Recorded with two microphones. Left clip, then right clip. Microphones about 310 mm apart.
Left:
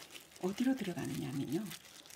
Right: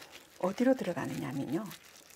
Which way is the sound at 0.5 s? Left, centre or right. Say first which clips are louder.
Right 8 dB; centre.